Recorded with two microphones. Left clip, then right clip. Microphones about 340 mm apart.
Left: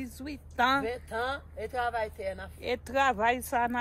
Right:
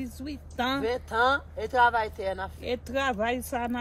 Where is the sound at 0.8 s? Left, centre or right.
Centre.